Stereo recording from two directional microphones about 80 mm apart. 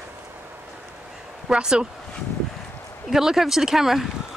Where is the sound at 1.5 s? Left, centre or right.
Centre.